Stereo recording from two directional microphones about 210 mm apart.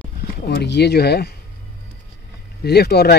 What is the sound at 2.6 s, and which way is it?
Speech, 50° left (ahead or behind).